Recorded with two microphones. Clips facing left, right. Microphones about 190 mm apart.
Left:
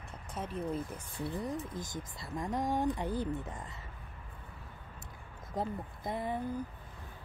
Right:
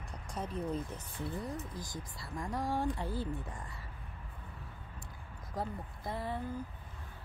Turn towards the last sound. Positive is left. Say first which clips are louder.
# left 3 dB
turn(degrees=20)  # may be behind; listen again after turning